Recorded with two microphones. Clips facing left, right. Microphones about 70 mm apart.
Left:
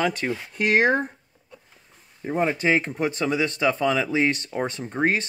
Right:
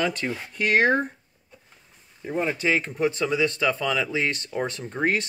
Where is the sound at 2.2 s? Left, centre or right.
Left.